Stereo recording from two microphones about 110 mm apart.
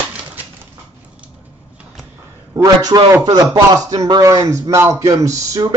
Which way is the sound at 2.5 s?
35° right (ahead or behind).